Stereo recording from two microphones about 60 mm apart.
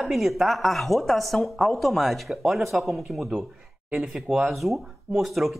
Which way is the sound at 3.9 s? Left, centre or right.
Right.